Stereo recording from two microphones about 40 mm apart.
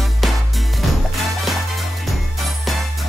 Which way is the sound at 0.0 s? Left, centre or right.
Centre.